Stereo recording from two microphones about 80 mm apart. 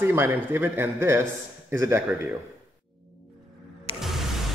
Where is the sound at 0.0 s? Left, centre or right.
Right.